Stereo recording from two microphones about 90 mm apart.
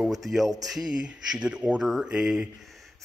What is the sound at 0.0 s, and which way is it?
A man's voice, 5° right (ahead or behind).